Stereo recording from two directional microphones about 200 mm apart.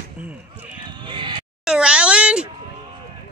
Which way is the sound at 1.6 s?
5° right (ahead or behind).